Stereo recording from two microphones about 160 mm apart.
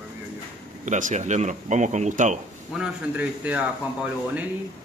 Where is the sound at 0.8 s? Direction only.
50° right (ahead or behind).